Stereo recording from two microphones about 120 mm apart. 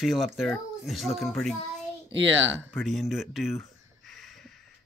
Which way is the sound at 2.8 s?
Centre (ahead or behind).